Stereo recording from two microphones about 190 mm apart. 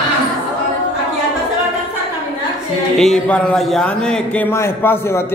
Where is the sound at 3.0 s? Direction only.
5° left (ahead or behind).